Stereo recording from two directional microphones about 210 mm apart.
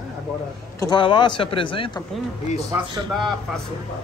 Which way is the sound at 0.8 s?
20° left (ahead or behind).